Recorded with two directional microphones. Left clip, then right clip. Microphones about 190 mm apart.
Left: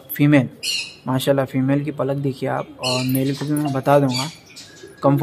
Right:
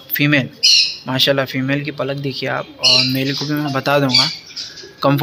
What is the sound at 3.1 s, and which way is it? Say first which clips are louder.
Speech: right 2 dB; 10° left (ahead or behind).